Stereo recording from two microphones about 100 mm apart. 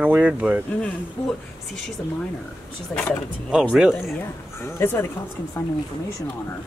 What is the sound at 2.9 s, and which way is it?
Speech, 5° left (ahead or behind).